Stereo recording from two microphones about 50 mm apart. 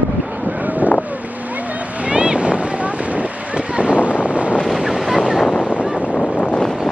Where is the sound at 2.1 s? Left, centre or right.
Right.